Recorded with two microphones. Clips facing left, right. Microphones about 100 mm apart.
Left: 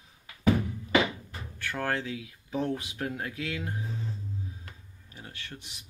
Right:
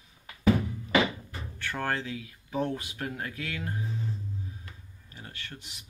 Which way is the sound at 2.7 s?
15° left (ahead or behind).